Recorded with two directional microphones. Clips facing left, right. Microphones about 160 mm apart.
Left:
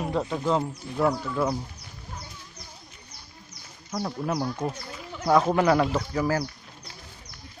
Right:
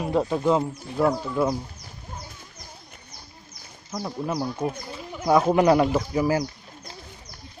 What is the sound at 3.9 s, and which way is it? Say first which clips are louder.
Speech: even; 5° right (ahead or behind).